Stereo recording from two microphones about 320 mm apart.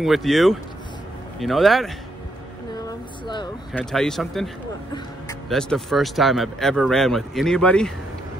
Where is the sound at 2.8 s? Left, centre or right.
Centre.